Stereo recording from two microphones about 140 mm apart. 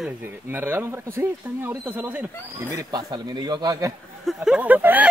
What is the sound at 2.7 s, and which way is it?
Speech, 30° right (ahead or behind).